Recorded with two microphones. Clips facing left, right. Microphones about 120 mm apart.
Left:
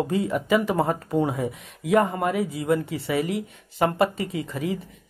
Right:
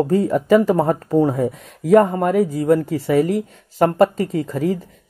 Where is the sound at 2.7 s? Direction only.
40° right (ahead or behind).